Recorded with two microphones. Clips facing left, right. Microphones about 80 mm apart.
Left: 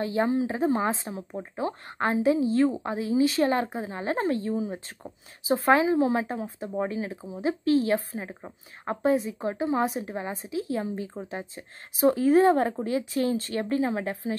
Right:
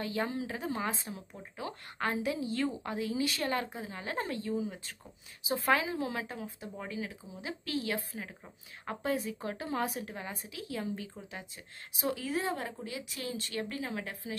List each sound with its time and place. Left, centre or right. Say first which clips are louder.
0.0 s a woman's voice: left 9 dB; left